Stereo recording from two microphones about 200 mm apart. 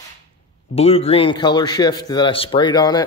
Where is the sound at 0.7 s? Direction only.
30° left (ahead or behind).